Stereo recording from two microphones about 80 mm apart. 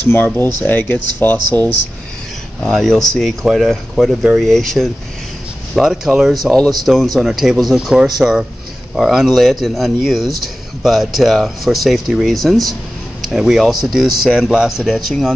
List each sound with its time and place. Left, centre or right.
0.7 s speech: left
2.6 s speech: centre